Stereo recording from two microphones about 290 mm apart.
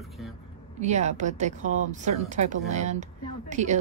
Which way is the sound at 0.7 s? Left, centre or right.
Right.